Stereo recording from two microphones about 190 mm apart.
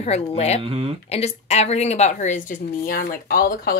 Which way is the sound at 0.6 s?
30° right (ahead or behind).